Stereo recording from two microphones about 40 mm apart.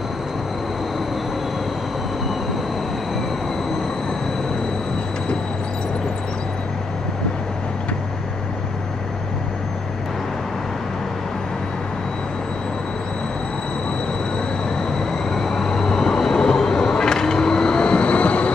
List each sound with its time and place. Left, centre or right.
15.0 s vehicle: centre; by 18.5 s left